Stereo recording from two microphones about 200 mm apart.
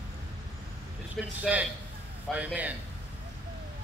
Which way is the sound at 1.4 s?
5° right (ahead or behind).